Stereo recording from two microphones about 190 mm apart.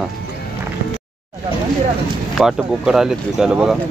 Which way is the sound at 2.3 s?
Centre (ahead or behind).